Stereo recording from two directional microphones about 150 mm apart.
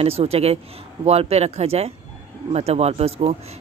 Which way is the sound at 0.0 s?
40° right (ahead or behind).